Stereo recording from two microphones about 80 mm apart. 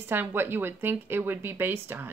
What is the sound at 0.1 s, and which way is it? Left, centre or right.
Speech, right.